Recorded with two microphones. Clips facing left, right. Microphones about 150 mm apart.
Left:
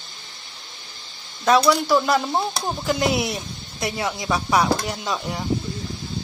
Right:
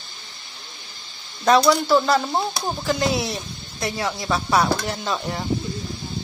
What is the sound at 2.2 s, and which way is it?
Speech, centre (ahead or behind).